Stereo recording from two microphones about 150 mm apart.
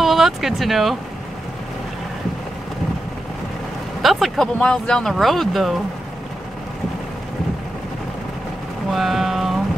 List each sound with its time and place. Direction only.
0.0 s speech: centre (ahead or behind)
4.0 s speech: centre (ahead or behind)
8.9 s vehicle: centre (ahead or behind)